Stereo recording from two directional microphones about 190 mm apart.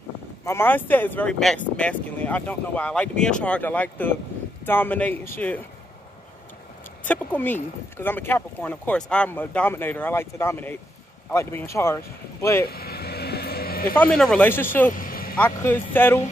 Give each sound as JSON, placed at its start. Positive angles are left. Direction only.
{"t": 0.5, "sound": "speech", "side_deg": 10}
{"t": 7.1, "sound": "speech", "side_deg": 10}
{"t": 12.6, "sound": "vehicle", "side_deg": 55}
{"t": 13.9, "sound": "speech", "side_deg": 5}
{"t": 14.9, "sound": "vehicle", "side_deg": 45}
{"t": 15.3, "sound": "speech", "side_deg": 10}